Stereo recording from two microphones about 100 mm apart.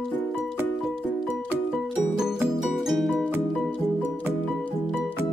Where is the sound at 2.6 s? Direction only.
Centre (ahead or behind).